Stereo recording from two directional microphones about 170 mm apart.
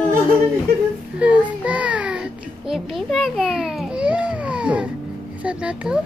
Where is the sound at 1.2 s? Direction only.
5° right (ahead or behind).